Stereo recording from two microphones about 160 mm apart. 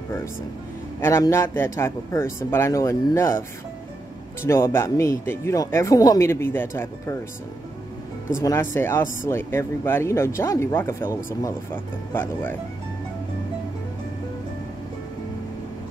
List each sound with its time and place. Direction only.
1.0 s speech: 15° left (ahead or behind)
8.4 s speech: 15° left (ahead or behind)